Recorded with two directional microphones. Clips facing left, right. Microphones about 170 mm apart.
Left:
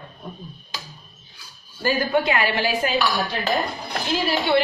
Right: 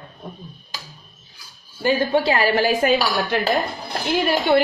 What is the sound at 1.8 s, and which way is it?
Speech, 25° right (ahead or behind).